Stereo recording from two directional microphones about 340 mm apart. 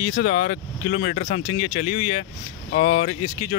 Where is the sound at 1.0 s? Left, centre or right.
Left.